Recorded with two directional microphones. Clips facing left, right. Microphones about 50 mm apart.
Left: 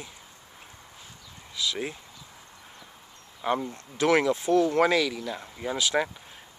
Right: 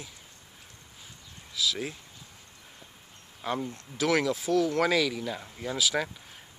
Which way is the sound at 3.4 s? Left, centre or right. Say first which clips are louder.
Left 4 dB; centre.